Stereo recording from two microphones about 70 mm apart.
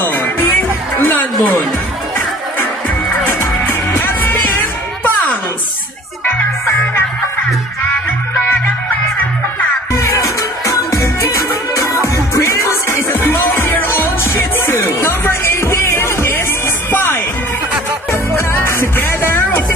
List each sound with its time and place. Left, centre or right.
0.0 s music: left
3.6 s music: left
9.9 s music: left